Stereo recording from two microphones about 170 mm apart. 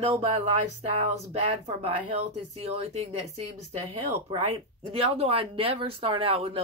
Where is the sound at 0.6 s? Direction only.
40° right (ahead or behind).